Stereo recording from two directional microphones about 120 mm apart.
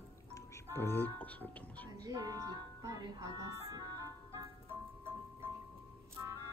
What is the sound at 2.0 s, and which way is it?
Music, 30° right (ahead or behind).